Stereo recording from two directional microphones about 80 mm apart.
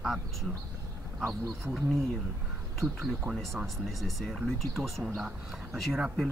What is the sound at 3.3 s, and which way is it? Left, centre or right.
Speech, right.